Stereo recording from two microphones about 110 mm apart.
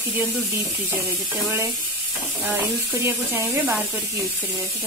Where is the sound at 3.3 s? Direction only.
20° right (ahead or behind).